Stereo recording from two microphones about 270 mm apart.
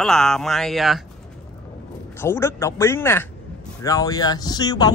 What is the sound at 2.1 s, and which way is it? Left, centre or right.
A man's voice, centre.